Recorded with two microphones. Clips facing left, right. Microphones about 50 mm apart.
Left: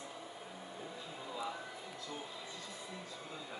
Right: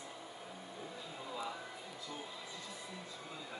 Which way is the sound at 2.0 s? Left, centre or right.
Centre.